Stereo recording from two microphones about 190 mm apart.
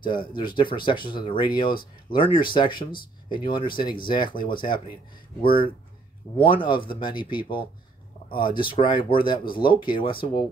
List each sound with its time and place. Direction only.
0.1 s speech: 25° left (ahead or behind)
6.3 s speech: 25° left (ahead or behind)